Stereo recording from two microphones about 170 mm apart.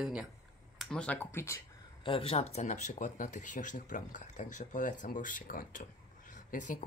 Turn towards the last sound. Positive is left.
turn(degrees=45)  # may be behind; listen again after turning